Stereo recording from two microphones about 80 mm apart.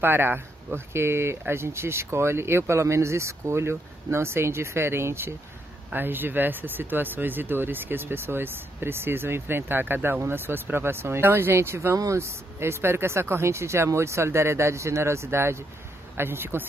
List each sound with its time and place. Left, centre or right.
0.0 s speech: right